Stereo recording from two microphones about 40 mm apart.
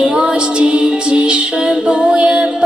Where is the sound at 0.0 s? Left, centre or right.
Right.